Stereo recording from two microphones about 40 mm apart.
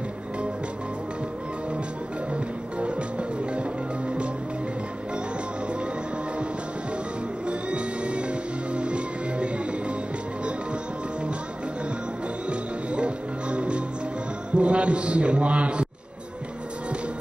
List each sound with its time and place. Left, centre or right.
2.8 s music: right
7.4 s music: right
12.4 s music: right
14.5 s a man's voice: right